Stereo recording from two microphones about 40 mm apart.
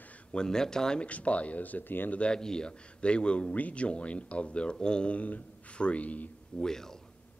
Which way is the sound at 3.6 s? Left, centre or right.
Left.